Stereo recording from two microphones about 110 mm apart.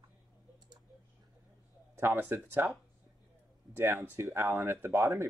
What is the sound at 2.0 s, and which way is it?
Speech, 20° right (ahead or behind).